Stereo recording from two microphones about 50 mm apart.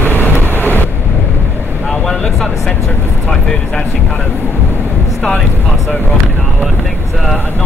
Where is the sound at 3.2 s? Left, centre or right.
Centre.